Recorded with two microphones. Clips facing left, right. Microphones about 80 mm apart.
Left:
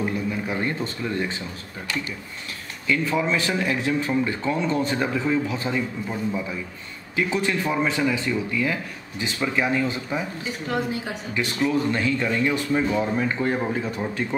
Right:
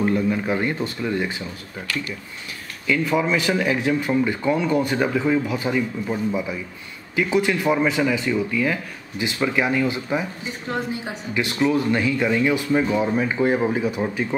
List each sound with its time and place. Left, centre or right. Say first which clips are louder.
0.3 s speech: right 4 dB; right
0.7 s speech: right 3 dB; centre
2.9 s speech: right 2 dB; centre
9.2 s speech: right 3 dB; centre